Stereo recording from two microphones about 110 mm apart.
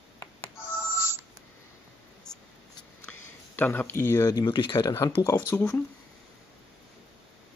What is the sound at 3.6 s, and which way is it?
Speech, 20° left (ahead or behind).